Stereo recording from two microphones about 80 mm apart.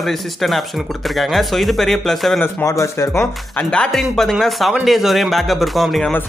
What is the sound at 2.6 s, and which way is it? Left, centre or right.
Speech, left.